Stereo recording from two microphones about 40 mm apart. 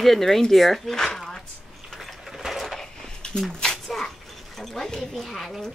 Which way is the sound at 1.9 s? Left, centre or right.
Centre.